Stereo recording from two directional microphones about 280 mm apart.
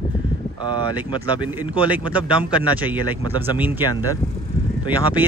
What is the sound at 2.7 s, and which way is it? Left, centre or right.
Speech, centre.